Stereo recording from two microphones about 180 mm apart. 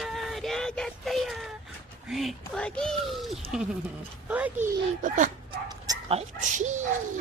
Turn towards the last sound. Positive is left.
turn(degrees=-40)  # may be behind; listen again after turning